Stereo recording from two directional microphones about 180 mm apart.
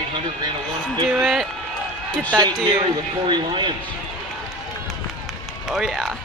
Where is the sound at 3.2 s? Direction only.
25° right (ahead or behind).